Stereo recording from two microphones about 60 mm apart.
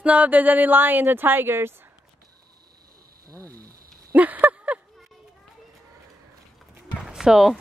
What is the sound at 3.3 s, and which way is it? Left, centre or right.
Speech, right.